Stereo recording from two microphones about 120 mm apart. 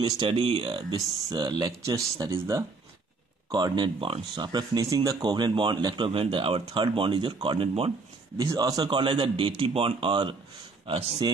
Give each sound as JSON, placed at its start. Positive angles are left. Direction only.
{"t": 0.3, "sound": "speech", "side_deg": -50}
{"t": 0.9, "sound": "speech", "side_deg": -35}
{"t": 3.5, "sound": "speech", "side_deg": -40}
{"t": 8.4, "sound": "speech", "side_deg": -30}
{"t": 10.9, "sound": "a man's voice", "side_deg": -55}